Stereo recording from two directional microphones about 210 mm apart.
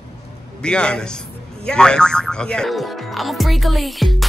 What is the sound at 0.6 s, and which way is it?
Speech, 5° left (ahead or behind).